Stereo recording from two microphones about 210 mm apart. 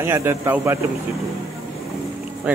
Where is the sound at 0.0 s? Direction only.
10° right (ahead or behind).